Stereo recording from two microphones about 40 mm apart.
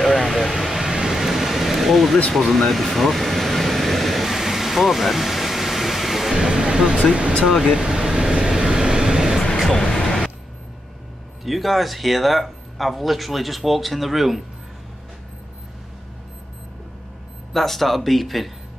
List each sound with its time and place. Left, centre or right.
0.0 s a sound: centre
2.3 s air conditioning: centre
6.4 s music: centre
7.4 s speech: centre
7.8 s vehicle: centre
9.7 s music: centre
11.4 s speech: centre
17.5 s speech: centre